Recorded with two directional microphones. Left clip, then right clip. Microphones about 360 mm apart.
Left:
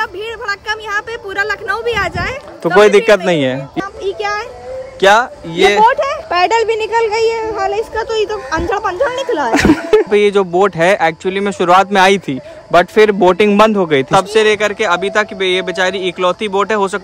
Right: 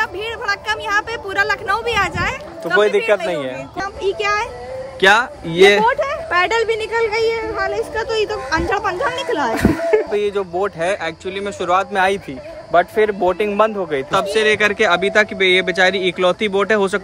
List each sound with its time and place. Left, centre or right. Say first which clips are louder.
0.0 s a sound: left 1 dB; centre
2.6 s speech: left 7 dB; left
4.0 s speech: right 1 dB; centre
5.9 s speech: left 4 dB; left
7.9 s speech: left 3 dB; centre
9.5 s speech: left 7 dB; left
14.1 s speech: left 3 dB; centre